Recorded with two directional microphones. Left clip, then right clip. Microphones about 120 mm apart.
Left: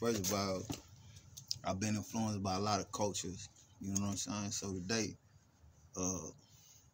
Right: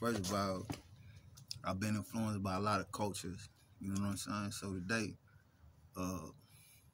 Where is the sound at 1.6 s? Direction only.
40° right (ahead or behind).